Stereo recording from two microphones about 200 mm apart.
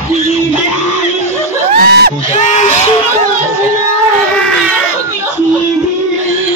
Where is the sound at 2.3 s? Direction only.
35° left (ahead or behind).